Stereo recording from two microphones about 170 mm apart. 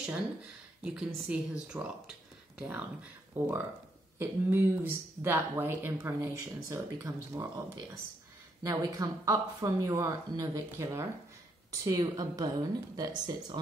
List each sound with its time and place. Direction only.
0.8 s speech: 5° right (ahead or behind); by 13.6 s 25° right (ahead or behind)